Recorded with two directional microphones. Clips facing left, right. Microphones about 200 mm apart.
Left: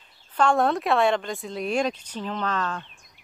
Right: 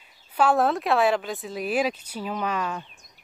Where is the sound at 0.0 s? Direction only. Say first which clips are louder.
Even; 10° right (ahead or behind).